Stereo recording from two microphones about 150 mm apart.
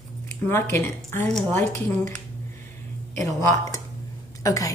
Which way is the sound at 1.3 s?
5° left (ahead or behind).